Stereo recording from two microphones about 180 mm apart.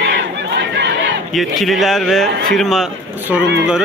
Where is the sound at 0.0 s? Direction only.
70° right (ahead or behind).